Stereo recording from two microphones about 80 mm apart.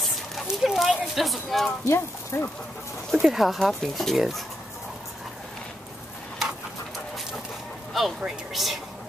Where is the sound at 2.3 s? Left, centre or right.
Left.